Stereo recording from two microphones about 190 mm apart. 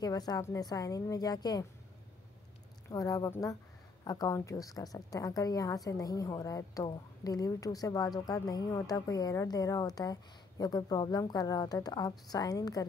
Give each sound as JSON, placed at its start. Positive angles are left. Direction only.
{"t": 0.0, "sound": "a woman's voice", "side_deg": 20}
{"t": 2.9, "sound": "a woman's voice", "side_deg": 15}